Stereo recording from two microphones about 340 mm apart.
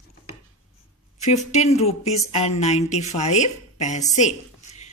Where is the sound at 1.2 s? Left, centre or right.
Centre.